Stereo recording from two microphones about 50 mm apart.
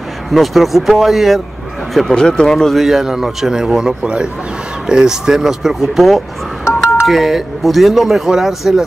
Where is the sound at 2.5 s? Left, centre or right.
Centre.